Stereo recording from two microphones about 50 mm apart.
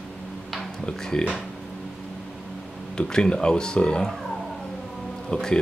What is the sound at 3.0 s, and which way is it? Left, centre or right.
Speech, centre.